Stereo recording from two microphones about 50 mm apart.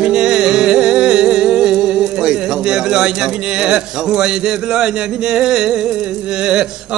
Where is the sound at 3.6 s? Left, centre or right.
Centre.